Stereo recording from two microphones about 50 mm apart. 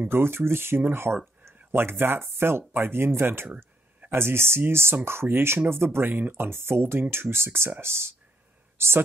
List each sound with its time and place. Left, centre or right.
0.1 s speech: right